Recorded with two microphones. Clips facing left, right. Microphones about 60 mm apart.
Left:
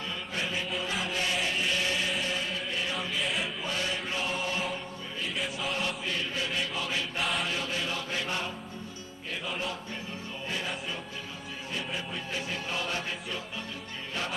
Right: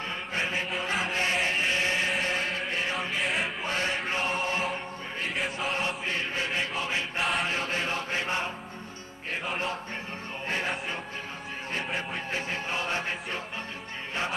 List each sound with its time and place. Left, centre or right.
0.3 s chant: right
5.7 s chant: right
6.8 s choir: right
7.2 s chant: centre
7.4 s mantra: right
11.7 s music: right